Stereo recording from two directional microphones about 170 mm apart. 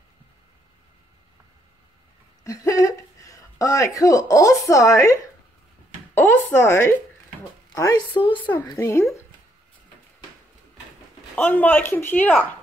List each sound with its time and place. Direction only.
2.4 s a woman's voice: 20° left (ahead or behind)
8.5 s a woman's voice: 15° left (ahead or behind)
11.3 s a woman's voice: 10° left (ahead or behind)